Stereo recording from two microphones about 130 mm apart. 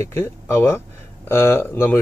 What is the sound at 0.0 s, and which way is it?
Speech, 20° left (ahead or behind).